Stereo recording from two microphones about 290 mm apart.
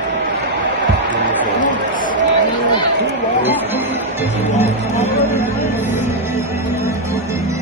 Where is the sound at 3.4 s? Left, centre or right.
Centre.